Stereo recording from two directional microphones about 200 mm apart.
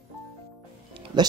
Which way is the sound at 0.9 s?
20° right (ahead or behind).